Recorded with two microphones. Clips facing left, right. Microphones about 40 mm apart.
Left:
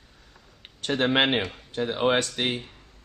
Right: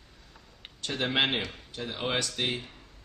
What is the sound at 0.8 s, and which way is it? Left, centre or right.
Speech, left.